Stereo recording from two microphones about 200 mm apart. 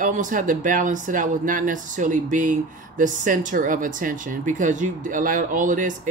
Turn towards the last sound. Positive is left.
turn(degrees=-40)  # may be behind; listen again after turning